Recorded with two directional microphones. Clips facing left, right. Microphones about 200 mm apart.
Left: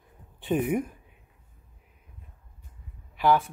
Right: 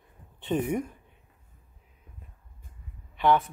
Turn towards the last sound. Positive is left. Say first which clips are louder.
# even
turn(degrees=5)  # may be behind; listen again after turning